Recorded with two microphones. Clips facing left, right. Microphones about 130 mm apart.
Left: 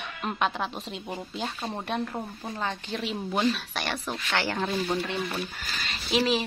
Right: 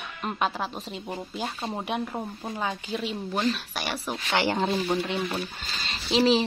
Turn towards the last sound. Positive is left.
turn(degrees=-30)  # may be behind; listen again after turning